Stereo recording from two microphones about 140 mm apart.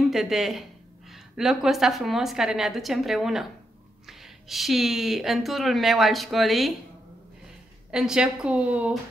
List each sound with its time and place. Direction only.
0.1 s speech: centre (ahead or behind)
7.9 s a woman's voice: 5° right (ahead or behind)